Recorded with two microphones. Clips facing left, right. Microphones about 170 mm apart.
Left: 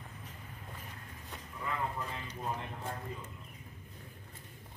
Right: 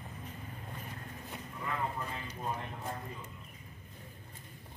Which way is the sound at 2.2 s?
10° right (ahead or behind).